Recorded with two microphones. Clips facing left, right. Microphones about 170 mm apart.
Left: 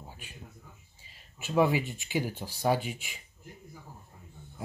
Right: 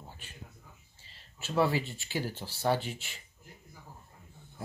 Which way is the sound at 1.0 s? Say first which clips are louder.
Left 1 dB; 15° left (ahead or behind).